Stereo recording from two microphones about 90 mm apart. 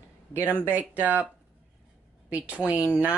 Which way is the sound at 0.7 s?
20° right (ahead or behind).